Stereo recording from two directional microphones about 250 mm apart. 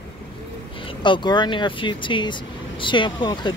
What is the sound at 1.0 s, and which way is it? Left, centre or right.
Speech, centre.